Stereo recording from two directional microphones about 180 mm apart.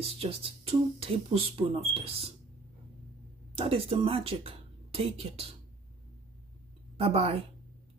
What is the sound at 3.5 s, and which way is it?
Speech, 30° right (ahead or behind).